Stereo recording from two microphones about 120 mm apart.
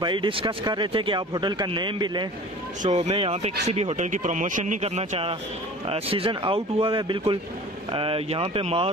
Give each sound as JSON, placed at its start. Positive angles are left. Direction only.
{"t": 0.0, "sound": "a man's voice", "side_deg": -40}
{"t": 2.8, "sound": "speech", "side_deg": -65}